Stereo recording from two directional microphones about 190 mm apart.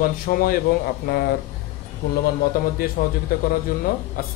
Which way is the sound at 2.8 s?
50° left (ahead or behind).